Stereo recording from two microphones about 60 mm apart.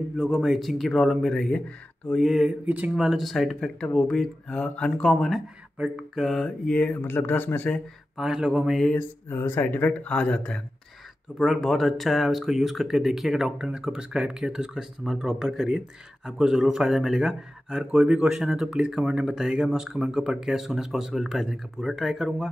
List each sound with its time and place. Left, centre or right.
0.2 s speech: centre
2.1 s speech: centre
2.6 s speech: right
3.0 s speech: centre
3.8 s mantra: centre
5.1 s speech: centre
6.1 s mantra: centre
6.9 s speech: left
8.2 s speech: centre
8.9 s speech: left
11.3 s speech: centre